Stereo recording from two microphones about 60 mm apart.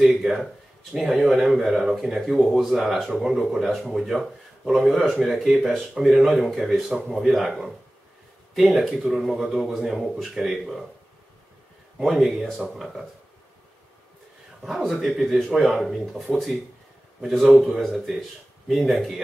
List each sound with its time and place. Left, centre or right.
0.0 s speech: centre
8.7 s speech: centre
12.0 s speech: centre
14.6 s speech: centre
17.6 s speech: centre